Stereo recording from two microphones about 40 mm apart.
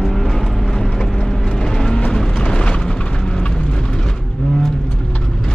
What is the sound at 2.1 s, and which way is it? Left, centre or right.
Music, centre.